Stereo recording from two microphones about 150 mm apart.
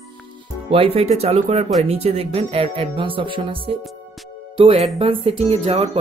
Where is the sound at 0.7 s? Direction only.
40° right (ahead or behind).